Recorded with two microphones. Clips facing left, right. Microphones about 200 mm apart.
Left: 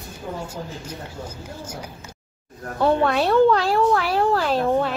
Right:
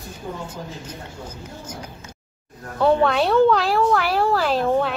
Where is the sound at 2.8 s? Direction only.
Centre (ahead or behind).